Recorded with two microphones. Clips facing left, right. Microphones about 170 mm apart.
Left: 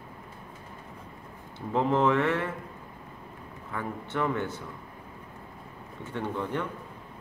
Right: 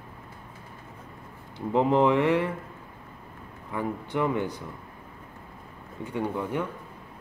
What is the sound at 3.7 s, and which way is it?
Speech, 15° right (ahead or behind).